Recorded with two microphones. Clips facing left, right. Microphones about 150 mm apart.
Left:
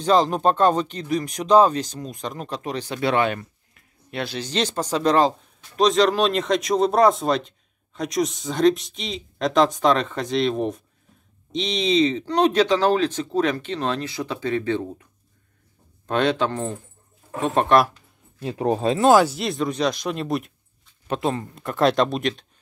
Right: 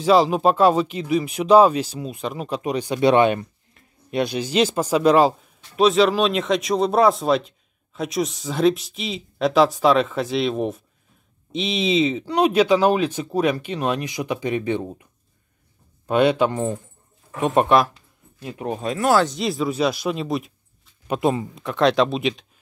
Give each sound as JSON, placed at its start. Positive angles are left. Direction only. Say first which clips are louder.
{"t": 0.0, "sound": "speech", "louder": "right 2 dB", "side_deg": -5}
{"t": 16.1, "sound": "speech", "louder": "right 4 dB", "side_deg": -10}
{"t": 18.4, "sound": "speech", "louder": "left 5 dB", "side_deg": 30}
{"t": 19.1, "sound": "speech", "louder": "left 1 dB", "side_deg": 5}
{"t": 21.1, "sound": "speech", "louder": "right 3 dB", "side_deg": -10}